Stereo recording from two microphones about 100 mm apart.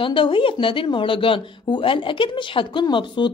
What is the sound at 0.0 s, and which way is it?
Speech, 60° left (ahead or behind).